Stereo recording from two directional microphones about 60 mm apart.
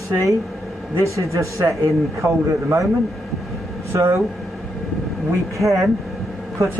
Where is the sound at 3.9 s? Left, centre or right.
Right.